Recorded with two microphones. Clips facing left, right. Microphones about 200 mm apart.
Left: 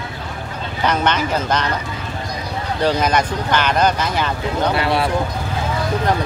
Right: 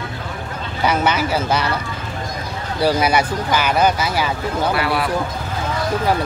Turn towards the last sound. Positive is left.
turn(degrees=25)  # may be behind; listen again after turning